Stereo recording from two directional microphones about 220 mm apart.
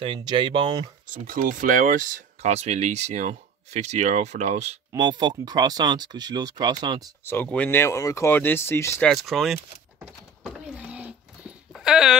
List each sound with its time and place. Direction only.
0.0 s speech: 20° right (ahead or behind)
1.0 s speech: 35° right (ahead or behind); by 7.1 s 20° right (ahead or behind)
7.2 s speech: 10° left (ahead or behind)
9.1 s power windows: centre (ahead or behind)